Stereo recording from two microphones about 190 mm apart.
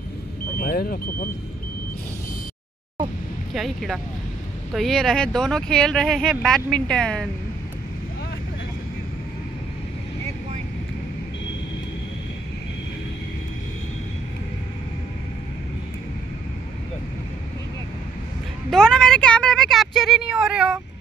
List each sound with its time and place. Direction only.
0.6 s speech: 50° left (ahead or behind)
3.5 s speech: centre (ahead or behind)
18.7 s a sound: 5° left (ahead or behind)